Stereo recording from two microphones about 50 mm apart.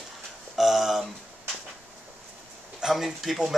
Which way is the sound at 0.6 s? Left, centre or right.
Centre.